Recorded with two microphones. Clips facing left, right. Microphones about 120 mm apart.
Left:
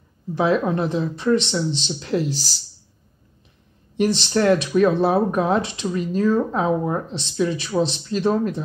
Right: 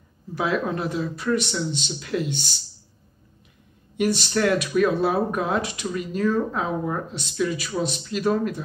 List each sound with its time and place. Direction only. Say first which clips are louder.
0.3 s speech: left 5 dB; 25° left (ahead or behind)
2.3 s speech: left 1 dB; centre (ahead or behind)
4.2 s speech: left 4 dB; 25° left (ahead or behind)